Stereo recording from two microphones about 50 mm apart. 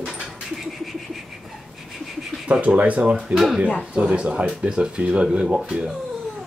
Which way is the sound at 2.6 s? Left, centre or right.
Right.